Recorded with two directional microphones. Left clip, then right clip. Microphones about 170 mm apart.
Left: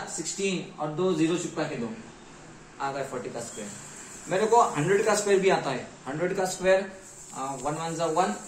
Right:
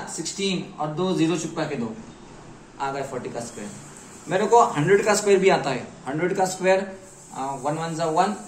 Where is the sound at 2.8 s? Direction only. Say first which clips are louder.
Right 4 dB; 25° left (ahead or behind).